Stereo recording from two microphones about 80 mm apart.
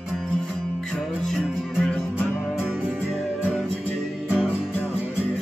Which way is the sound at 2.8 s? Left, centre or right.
Centre.